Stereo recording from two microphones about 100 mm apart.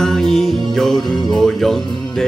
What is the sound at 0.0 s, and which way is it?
Music, 5° left (ahead or behind).